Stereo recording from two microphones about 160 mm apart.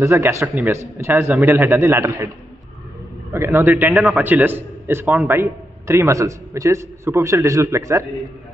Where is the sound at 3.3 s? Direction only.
15° right (ahead or behind).